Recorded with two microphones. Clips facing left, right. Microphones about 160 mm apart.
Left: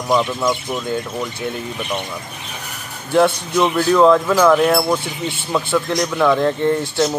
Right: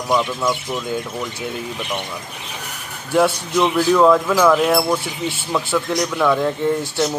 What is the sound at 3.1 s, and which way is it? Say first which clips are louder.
Speech: left 2 dB; 5° right (ahead or behind).